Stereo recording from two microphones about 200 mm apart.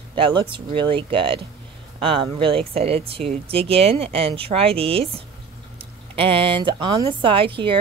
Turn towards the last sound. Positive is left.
turn(degrees=-25)  # may be behind; listen again after turning